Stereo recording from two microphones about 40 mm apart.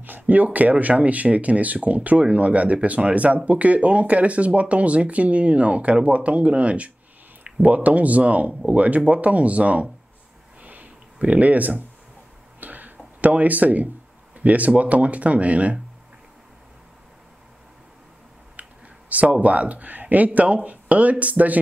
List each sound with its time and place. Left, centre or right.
0.0 s speech: right
10.6 s a sound: right
11.1 s speech: right
12.5 s a sound: right
14.3 s speech: right
18.6 s clicking: right
19.4 s speech: right